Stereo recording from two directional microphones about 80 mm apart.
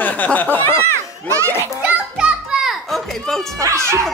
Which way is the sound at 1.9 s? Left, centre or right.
Centre.